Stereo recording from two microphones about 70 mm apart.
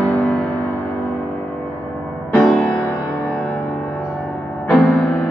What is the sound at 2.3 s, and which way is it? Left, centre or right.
Music, centre.